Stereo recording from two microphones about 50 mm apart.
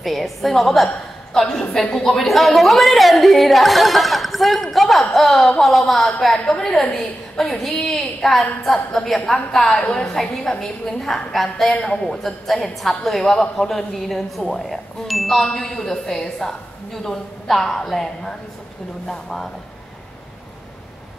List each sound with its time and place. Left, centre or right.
0.0 s a woman's voice: centre
6.3 s a woman's voice: centre
9.8 s a woman's voice: left
10.0 s a woman's voice: centre